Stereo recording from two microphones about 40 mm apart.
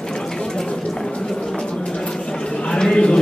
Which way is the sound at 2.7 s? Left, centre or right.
Centre.